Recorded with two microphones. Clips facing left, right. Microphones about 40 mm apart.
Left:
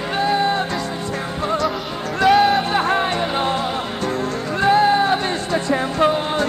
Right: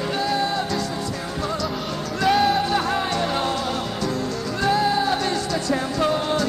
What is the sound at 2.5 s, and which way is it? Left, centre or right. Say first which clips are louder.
Music: left 3 dB; left.